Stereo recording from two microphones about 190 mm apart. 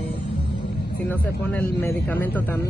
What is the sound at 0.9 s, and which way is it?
Speech, 10° left (ahead or behind).